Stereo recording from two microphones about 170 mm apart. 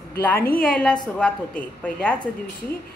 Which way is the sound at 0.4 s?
60° left (ahead or behind).